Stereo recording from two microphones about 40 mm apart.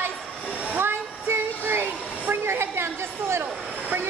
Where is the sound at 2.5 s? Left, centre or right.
Right.